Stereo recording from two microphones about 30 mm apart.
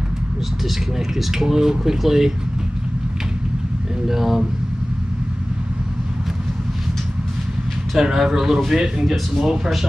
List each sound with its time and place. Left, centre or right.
0.9 s speech: centre
4.1 s speech: centre
8.0 s speech: centre
9.4 s speech: centre